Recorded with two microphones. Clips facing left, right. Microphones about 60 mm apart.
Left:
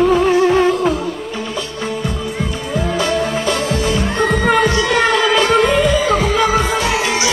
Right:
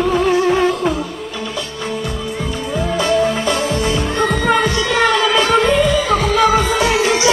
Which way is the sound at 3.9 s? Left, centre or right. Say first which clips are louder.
Left 1 dB; centre.